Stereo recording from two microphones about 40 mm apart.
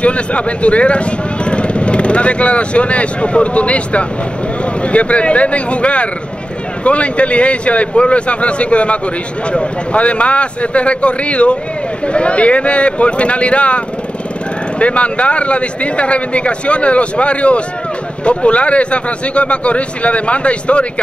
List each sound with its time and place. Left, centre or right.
0.0 s a man's voice: left